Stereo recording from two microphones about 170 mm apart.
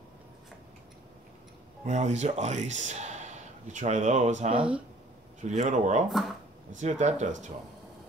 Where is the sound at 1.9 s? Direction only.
40° right (ahead or behind).